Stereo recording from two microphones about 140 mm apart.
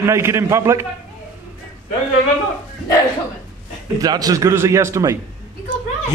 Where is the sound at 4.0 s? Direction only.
25° right (ahead or behind).